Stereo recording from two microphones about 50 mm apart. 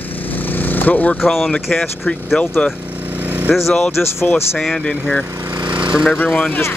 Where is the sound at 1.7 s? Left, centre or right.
Left.